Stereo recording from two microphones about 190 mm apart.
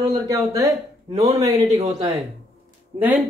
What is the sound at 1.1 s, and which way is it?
Speech, 35° right (ahead or behind).